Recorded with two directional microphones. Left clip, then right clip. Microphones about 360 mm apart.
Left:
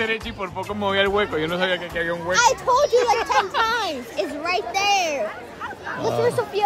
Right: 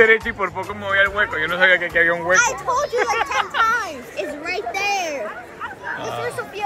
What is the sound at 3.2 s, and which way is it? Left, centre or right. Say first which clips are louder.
Speech: even; centre.